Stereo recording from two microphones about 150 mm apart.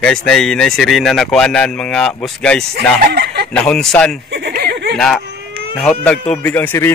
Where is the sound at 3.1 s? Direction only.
90° right.